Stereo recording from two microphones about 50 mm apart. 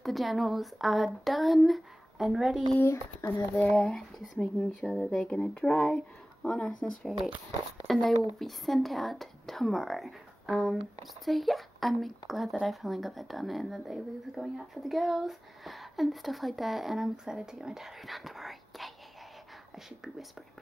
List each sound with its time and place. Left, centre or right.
0.0 s a woman's voice: centre
2.9 s speech: left
3.6 s speech: centre
5.7 s speech: left
7.8 s a woman's voice: centre